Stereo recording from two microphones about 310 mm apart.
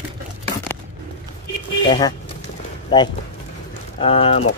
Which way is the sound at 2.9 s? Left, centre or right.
Centre.